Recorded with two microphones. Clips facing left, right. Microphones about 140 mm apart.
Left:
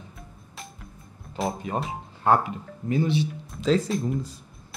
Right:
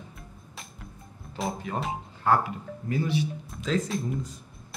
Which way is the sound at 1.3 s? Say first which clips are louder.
Left 4 dB; centre (ahead or behind).